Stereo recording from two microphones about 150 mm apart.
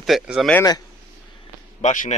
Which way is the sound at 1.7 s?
50° left (ahead or behind).